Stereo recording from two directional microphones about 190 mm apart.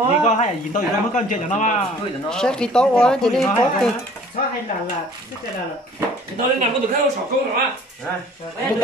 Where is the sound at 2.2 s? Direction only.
5° left (ahead or behind).